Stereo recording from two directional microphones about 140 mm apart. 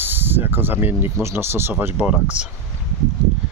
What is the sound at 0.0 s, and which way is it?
Speech, 15° right (ahead or behind).